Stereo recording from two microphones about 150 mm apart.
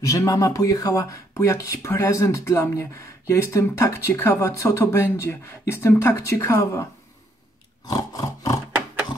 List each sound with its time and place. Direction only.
0.0 s speech: 20° left (ahead or behind)
7.8 s roar: 25° left (ahead or behind)